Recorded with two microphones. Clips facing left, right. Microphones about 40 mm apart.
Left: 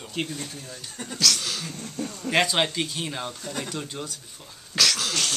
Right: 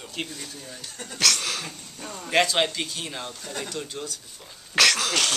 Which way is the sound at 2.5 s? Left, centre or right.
Centre.